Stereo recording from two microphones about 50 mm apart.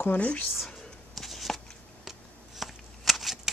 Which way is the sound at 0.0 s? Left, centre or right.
Left.